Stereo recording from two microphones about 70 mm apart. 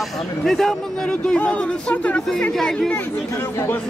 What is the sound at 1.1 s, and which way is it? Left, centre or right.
Speech, centre.